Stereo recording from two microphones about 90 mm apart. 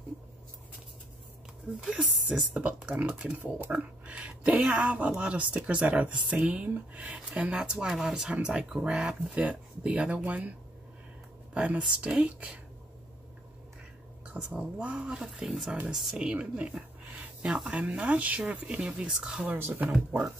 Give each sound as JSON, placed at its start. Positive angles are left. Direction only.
{"t": 1.8, "sound": "speech", "side_deg": -5}
{"t": 11.5, "sound": "speech", "side_deg": -15}
{"t": 14.3, "sound": "speech", "side_deg": -10}
{"t": 16.7, "sound": "a sound", "side_deg": -15}
{"t": 17.6, "sound": "speech", "side_deg": -15}
{"t": 19.5, "sound": "speech", "side_deg": -20}